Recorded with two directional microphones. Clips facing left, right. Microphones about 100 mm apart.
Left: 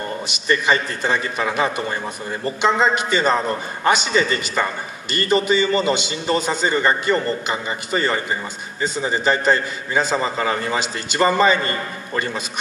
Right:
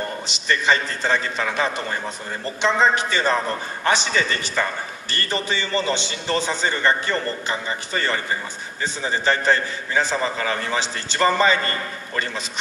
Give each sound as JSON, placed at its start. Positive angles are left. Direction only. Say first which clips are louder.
{"t": 0.3, "sound": "a man's voice", "louder": "left 2 dB", "side_deg": 15}